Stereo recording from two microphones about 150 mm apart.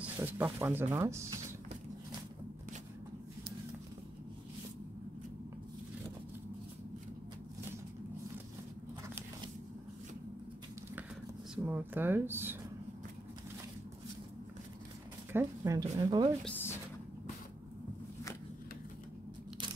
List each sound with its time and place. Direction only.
0.0 s speech: 15° right (ahead or behind)
11.5 s speech: 15° right (ahead or behind)
15.3 s speech: 20° right (ahead or behind)
16.4 s a sound: 15° left (ahead or behind)